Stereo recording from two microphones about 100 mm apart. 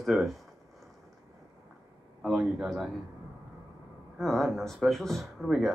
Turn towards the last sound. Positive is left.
turn(degrees=0)  # may be behind; listen again after turning